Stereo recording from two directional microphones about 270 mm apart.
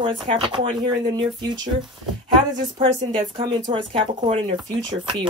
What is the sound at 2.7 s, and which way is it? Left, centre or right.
Speech, centre.